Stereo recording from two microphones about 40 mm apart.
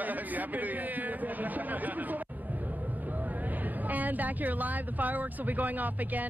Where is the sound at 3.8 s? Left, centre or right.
Right.